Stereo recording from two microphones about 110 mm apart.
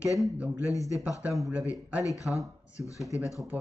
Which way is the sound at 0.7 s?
30° left (ahead or behind).